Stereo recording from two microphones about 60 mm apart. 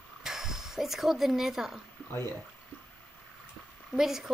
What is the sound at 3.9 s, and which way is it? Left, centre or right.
Speech, centre.